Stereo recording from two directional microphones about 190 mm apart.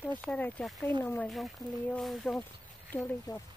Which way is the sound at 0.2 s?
5° left (ahead or behind).